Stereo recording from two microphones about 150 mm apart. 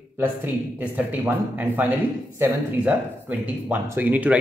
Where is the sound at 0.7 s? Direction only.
10° right (ahead or behind).